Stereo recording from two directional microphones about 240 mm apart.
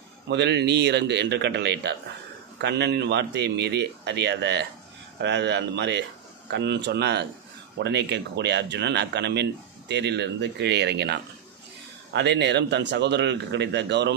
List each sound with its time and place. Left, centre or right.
0.3 s speech: right